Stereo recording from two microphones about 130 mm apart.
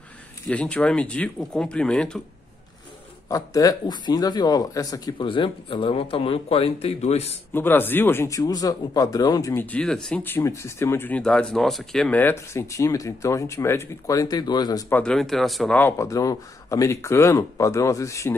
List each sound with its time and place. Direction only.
0.5 s speech: 10° left (ahead or behind)
3.3 s speech: 25° left (ahead or behind); by 7.3 s 55° left (ahead or behind)
7.5 s speech: 15° left (ahead or behind)
10.2 s speech: 20° left (ahead or behind)
14.9 s speech: 10° left (ahead or behind)
16.0 s speech: 25° left (ahead or behind)